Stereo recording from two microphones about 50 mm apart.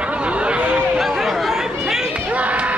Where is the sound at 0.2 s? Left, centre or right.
Right.